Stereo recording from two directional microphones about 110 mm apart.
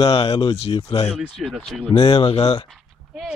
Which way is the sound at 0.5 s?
65° left (ahead or behind).